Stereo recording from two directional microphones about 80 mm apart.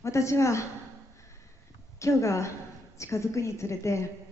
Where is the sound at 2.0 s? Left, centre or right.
Left.